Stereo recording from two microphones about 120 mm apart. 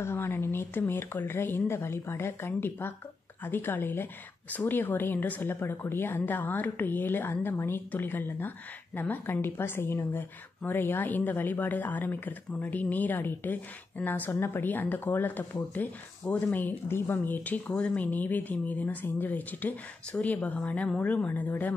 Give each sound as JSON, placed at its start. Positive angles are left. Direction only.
{"t": 0.0, "sound": "a woman's voice", "side_deg": 20}